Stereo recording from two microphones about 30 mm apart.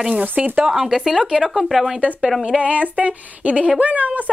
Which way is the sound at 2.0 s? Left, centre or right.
Right.